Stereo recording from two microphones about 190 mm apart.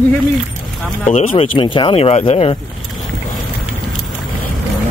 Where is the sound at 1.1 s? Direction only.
35° left (ahead or behind).